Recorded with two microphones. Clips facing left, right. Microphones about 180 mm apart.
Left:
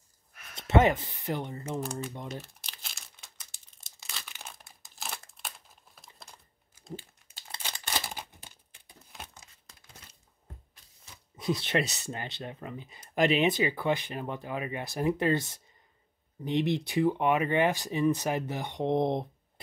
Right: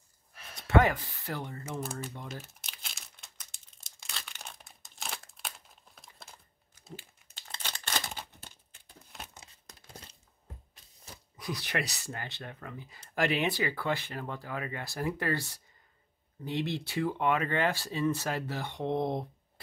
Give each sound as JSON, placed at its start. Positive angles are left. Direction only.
{"t": 0.3, "sound": "a sound", "side_deg": -30}
{"t": 0.6, "sound": "speech", "side_deg": 20}
{"t": 1.9, "sound": "speech", "side_deg": -5}
{"t": 2.6, "sound": "crumpling", "side_deg": 0}
{"t": 7.5, "sound": "scissors", "side_deg": 10}
{"t": 9.1, "sound": "crumpling", "side_deg": 0}
{"t": 11.3, "sound": "speech", "side_deg": 25}